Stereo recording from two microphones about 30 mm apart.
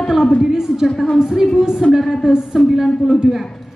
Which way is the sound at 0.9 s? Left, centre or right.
Centre.